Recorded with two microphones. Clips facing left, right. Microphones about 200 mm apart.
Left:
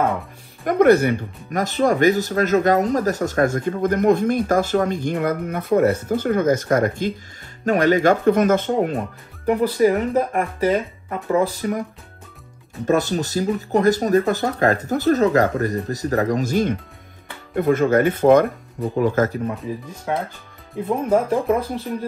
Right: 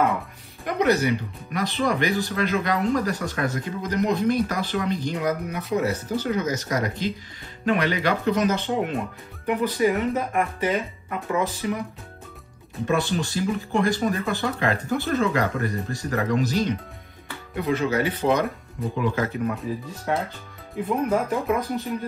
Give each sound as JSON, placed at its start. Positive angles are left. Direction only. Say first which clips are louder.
{"t": 0.7, "sound": "speech", "louder": "left 7 dB", "side_deg": 50}
{"t": 12.8, "sound": "speech", "louder": "left 4 dB", "side_deg": 40}
{"t": 19.6, "sound": "speech", "louder": "left 1 dB", "side_deg": 20}
{"t": 20.8, "sound": "speech", "louder": "left 4 dB", "side_deg": 30}